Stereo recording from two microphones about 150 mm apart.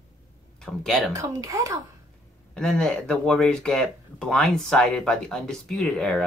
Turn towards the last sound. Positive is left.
turn(degrees=0)  # may be behind; listen again after turning